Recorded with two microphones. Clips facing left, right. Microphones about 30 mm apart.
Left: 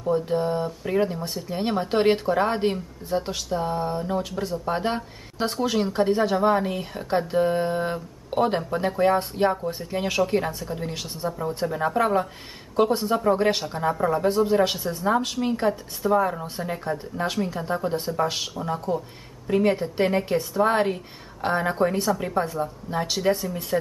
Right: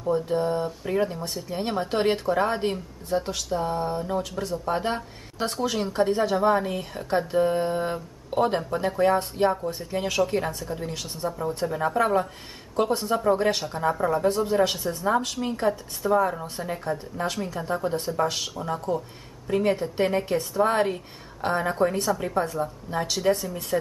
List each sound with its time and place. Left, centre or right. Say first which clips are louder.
0.0 s speech: left 1 dB; centre